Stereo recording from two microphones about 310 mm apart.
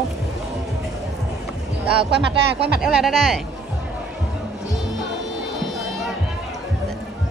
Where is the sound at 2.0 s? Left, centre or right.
Right.